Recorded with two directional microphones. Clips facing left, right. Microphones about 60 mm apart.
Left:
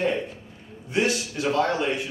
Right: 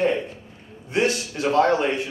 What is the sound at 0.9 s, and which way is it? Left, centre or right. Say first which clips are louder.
Speech: right 2 dB; right.